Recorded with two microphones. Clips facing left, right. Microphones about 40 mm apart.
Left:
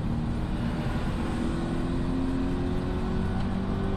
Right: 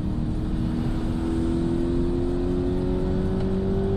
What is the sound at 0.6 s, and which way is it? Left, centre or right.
Vehicle, left.